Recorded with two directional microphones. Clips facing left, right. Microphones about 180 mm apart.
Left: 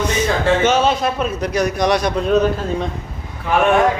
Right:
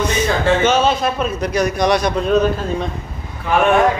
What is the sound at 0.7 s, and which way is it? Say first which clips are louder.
Speech: even; 15° left (ahead or behind).